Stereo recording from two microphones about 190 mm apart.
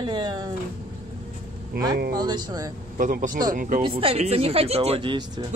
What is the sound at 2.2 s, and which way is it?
Speech, 20° right (ahead or behind).